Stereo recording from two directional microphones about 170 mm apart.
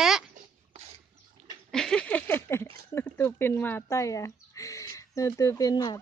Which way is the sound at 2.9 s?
15° left (ahead or behind).